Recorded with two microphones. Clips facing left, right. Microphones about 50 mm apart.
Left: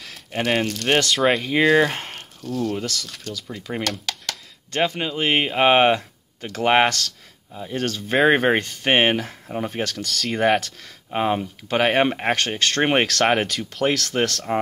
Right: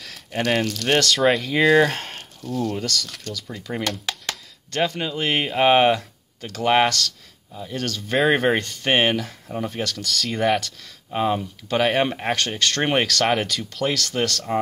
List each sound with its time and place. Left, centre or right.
0.0 s a sound: centre
0.4 s speech: centre
4.6 s speech: left
10.0 s speech: centre
10.6 s speech: left